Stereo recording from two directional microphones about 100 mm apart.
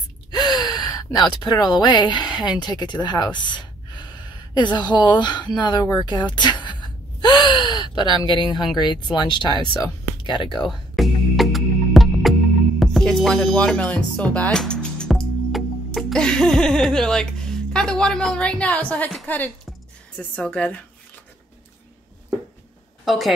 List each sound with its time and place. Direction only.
0.3 s speech: 45° left (ahead or behind)
10.6 s music: centre (ahead or behind)
14.6 s speech: 10° left (ahead or behind)
23.0 s a woman's voice: centre (ahead or behind)